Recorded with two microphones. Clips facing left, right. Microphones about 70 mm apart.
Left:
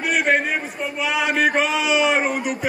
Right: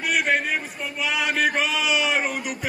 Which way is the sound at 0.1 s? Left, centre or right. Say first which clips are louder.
Left 3 dB; centre.